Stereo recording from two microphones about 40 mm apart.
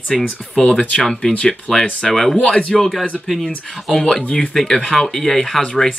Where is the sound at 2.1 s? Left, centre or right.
Centre.